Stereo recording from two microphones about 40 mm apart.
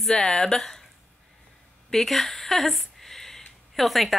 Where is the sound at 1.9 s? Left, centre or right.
Centre.